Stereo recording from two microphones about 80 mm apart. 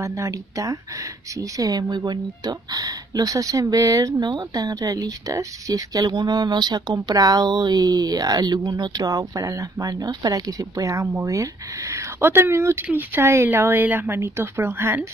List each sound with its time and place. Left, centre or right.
0.0 s speech: right
4.2 s a woman's voice: right